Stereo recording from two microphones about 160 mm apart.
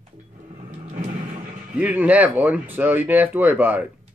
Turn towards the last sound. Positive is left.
turn(degrees=-10)  # may be behind; listen again after turning